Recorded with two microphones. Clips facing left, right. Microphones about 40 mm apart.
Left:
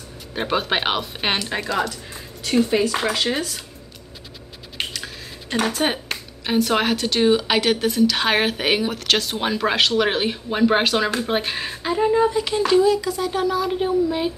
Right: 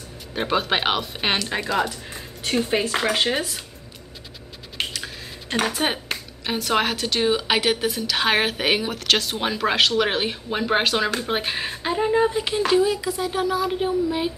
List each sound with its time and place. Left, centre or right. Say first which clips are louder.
0.3 s speech: even; centre
2.7 s speech: left 3 dB; right
3.3 s speech: even; centre
4.7 s speech: even; centre